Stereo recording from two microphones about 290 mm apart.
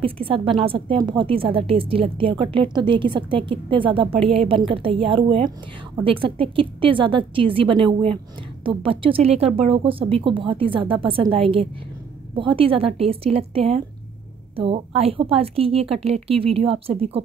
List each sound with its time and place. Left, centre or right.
0.0 s a woman's voice: centre